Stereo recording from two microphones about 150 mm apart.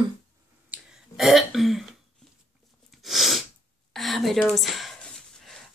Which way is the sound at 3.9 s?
Centre (ahead or behind).